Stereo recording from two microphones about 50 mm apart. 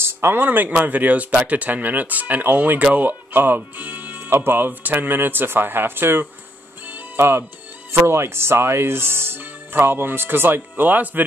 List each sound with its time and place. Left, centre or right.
0.0 s speech: right
7.2 s speech: right